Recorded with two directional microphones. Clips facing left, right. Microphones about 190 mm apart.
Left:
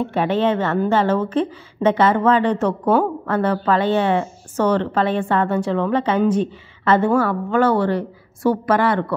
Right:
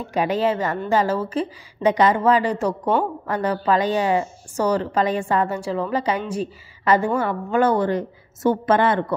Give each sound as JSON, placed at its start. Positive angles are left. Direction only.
{"t": 0.2, "sound": "a woman's voice", "side_deg": -10}